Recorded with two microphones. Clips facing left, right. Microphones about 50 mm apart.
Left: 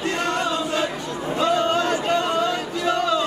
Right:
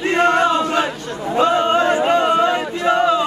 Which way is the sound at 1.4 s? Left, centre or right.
Right.